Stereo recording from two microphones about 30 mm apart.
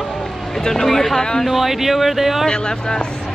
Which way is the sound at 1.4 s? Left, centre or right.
Centre.